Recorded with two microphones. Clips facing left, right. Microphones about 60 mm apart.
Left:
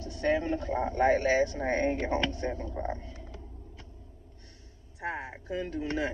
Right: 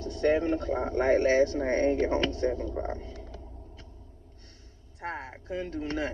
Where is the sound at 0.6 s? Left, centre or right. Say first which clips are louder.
Even; left.